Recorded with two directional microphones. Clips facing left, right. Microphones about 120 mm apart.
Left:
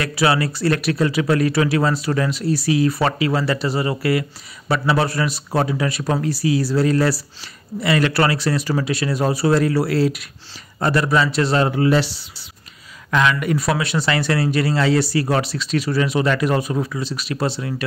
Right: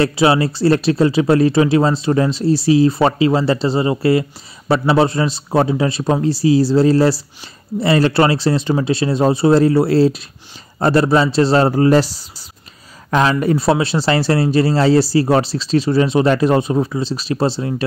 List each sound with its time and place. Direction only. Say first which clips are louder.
0.0 s speech: right 5 dB; 25° right (ahead or behind)